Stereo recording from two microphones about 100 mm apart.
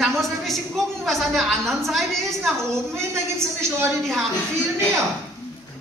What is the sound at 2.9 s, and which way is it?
Speech, 25° right (ahead or behind).